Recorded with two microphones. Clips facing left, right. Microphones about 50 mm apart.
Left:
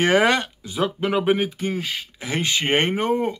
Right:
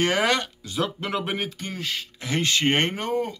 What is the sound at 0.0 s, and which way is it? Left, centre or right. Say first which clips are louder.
Speech: left 4 dB; left.